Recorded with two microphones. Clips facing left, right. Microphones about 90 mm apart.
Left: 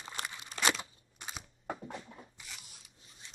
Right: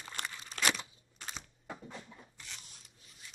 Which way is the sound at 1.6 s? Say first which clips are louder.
Left 6 dB; 55° left (ahead or behind).